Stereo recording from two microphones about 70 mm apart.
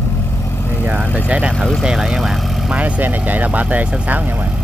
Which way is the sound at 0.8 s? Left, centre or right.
Right.